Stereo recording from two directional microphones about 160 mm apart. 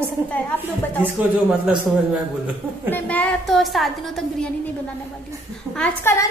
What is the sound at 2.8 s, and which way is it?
A woman's voice, 10° left (ahead or behind).